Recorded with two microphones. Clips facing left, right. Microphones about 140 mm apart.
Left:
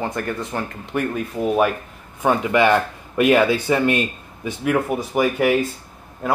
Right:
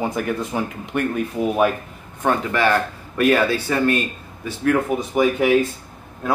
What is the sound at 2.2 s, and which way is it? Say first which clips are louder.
Speech: left 2 dB; 15° left (ahead or behind).